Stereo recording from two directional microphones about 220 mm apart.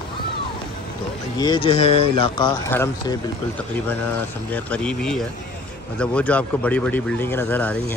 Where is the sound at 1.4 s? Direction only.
20° left (ahead or behind).